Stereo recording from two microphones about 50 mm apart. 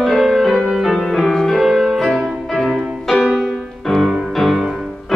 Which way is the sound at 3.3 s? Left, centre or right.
Centre.